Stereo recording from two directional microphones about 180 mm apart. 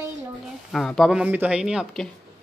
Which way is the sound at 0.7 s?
Centre (ahead or behind).